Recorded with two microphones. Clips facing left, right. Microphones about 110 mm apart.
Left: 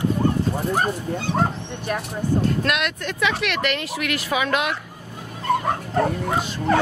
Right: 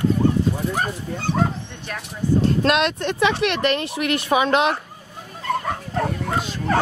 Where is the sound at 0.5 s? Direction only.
35° left (ahead or behind).